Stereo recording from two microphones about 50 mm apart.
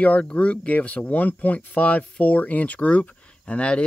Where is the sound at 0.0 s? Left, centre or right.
Left.